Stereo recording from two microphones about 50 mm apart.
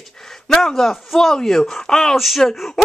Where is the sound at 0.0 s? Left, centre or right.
Centre.